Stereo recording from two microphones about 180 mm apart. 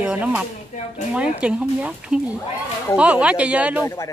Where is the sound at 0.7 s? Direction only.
40° left (ahead or behind).